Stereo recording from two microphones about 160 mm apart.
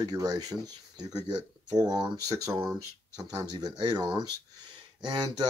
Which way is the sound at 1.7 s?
25° right (ahead or behind).